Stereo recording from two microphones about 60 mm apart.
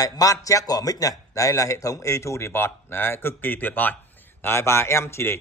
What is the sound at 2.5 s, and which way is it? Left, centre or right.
Speech, left.